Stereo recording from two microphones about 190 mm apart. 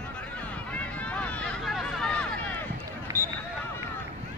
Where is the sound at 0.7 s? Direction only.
5° left (ahead or behind).